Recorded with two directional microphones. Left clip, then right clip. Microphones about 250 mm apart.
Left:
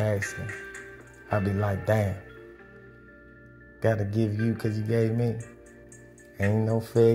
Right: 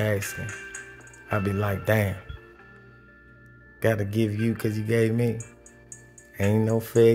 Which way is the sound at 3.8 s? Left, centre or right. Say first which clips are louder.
Right 2 dB; centre.